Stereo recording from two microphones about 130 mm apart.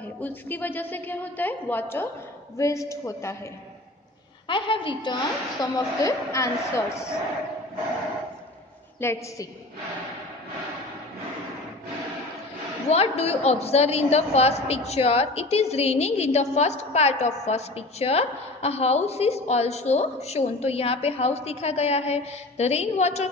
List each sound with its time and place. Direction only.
0.2 s a woman's voice: 15° left (ahead or behind)
4.5 s a woman's voice: 40° left (ahead or behind); by 7.2 s 20° left (ahead or behind)
9.0 s a woman's voice: 20° left (ahead or behind)
12.9 s a woman's voice: 50° left (ahead or behind)